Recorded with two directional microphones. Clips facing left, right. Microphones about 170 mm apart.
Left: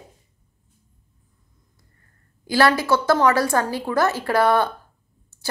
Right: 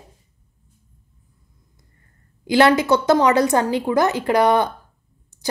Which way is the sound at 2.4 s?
20° right (ahead or behind).